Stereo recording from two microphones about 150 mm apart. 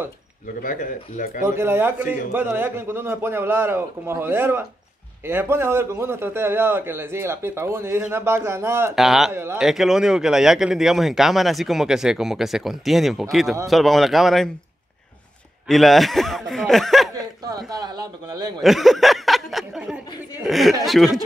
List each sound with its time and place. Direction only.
0.6 s speech: 60° left (ahead or behind)
1.4 s a man's voice: 15° right (ahead or behind)
8.9 s speech: centre (ahead or behind)
9.3 s a man's voice: 15° right (ahead or behind)
9.6 s speech: 5° right (ahead or behind)
15.7 s speech: centre (ahead or behind)
17.1 s a sound: 25° right (ahead or behind)
17.6 s a man's voice: 25° right (ahead or behind)
18.6 s speech: centre (ahead or behind)